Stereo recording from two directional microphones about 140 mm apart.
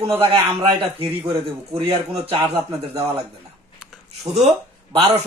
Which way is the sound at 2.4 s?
25° right (ahead or behind).